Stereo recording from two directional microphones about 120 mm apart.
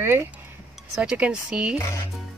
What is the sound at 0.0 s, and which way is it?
Speech, 20° right (ahead or behind).